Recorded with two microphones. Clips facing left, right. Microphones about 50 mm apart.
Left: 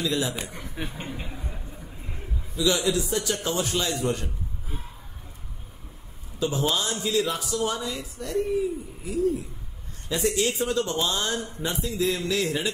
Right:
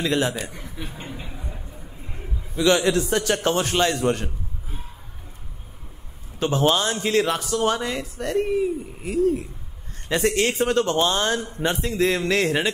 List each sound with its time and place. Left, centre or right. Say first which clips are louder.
0.0 s a man's voice: right 4 dB; right
0.4 s a man's voice: right 1 dB; left
2.5 s a man's voice: right 5 dB; right
6.4 s a man's voice: right 5 dB; right